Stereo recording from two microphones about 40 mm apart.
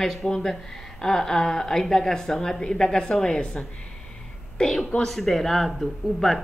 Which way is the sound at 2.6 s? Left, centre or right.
Centre.